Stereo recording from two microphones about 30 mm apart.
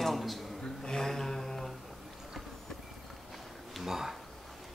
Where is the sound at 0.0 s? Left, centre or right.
Centre.